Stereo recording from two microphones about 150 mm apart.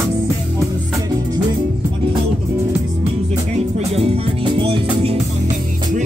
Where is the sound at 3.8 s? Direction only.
40° right (ahead or behind).